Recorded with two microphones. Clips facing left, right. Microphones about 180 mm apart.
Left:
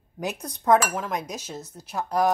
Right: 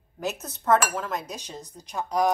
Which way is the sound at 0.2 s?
15° left (ahead or behind).